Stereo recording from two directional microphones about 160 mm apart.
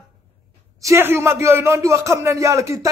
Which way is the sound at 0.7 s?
15° right (ahead or behind).